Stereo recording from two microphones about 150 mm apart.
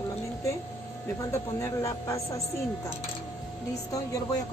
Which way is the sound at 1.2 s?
20° left (ahead or behind).